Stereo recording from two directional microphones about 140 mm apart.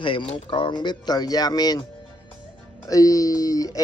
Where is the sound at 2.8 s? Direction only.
25° left (ahead or behind).